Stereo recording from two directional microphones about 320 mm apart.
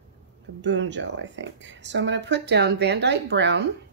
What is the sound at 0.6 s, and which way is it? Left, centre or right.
Speech, right.